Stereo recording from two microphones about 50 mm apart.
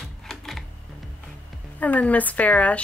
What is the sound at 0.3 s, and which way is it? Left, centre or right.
Typing, centre.